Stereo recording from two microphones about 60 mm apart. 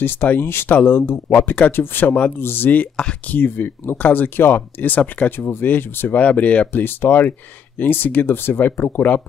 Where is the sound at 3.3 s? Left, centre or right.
Left.